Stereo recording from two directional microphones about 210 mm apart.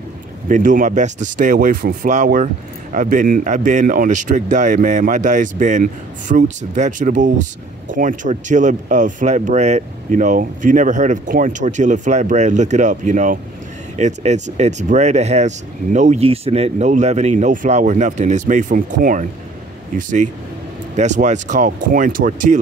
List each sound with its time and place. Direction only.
0.5 s speech: 40° right (ahead or behind)